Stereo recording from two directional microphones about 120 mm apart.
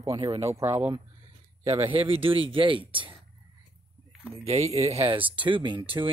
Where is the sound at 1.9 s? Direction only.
50° right (ahead or behind).